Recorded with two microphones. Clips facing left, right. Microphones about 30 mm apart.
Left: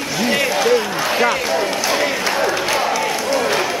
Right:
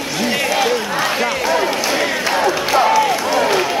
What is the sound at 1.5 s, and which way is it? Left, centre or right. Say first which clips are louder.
Run: right 2 dB; centre.